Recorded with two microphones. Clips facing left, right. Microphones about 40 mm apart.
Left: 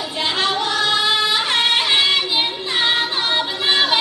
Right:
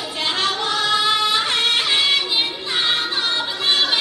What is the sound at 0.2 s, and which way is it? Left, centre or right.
Music, centre.